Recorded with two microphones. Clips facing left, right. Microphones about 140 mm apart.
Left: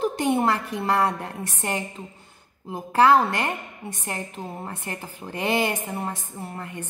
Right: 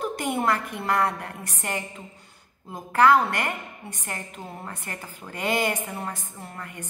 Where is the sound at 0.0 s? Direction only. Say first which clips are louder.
Left 4 dB; 25° left (ahead or behind).